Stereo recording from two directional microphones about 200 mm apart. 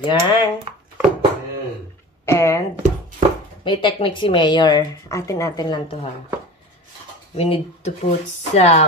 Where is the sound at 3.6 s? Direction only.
25° left (ahead or behind).